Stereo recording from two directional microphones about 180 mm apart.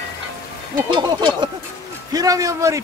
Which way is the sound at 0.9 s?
25° right (ahead or behind).